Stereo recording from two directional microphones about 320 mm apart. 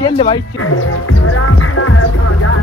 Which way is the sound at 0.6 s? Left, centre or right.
Left.